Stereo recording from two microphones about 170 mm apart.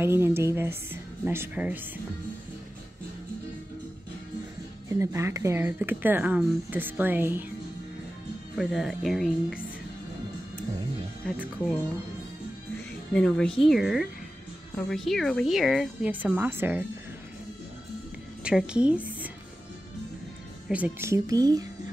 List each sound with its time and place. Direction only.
0.0 s speech: 15° right (ahead or behind)
4.8 s speech: 15° right (ahead or behind)
8.5 s a woman's voice: centre (ahead or behind)
13.1 s a woman's voice: 5° left (ahead or behind); by 16.8 s 10° right (ahead or behind)
18.4 s speech: 5° right (ahead or behind)
20.6 s speech: 10° right (ahead or behind)